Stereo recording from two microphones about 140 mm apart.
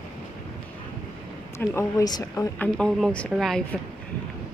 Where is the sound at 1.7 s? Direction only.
20° left (ahead or behind).